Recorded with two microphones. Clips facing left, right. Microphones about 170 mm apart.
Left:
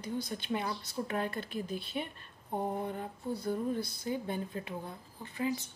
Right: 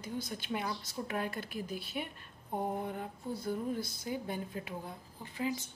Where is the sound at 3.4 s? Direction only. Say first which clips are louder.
Left 2 dB; 55° left (ahead or behind).